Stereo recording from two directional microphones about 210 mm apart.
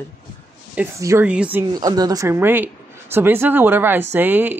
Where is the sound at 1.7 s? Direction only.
20° right (ahead or behind).